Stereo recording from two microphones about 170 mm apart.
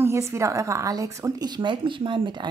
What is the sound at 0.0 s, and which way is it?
Speech, 15° right (ahead or behind).